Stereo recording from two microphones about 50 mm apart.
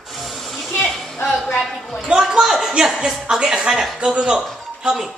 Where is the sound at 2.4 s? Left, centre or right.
Centre.